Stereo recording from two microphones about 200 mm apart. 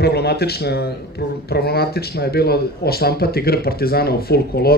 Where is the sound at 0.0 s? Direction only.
55° left (ahead or behind).